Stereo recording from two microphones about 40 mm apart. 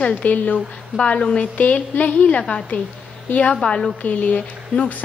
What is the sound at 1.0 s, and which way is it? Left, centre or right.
Speech, left.